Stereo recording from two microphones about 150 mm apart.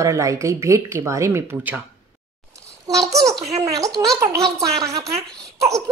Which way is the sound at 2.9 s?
20° right (ahead or behind).